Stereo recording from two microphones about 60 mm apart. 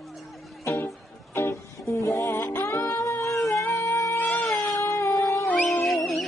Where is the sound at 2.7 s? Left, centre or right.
Left.